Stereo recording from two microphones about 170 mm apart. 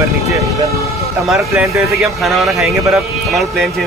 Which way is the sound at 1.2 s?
Centre (ahead or behind).